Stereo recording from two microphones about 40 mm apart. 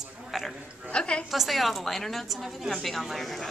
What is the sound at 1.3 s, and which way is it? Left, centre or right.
A woman's voice, centre.